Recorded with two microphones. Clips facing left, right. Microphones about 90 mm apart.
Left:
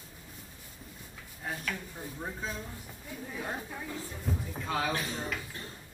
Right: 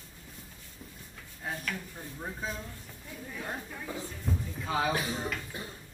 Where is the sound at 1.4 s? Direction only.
Centre (ahead or behind).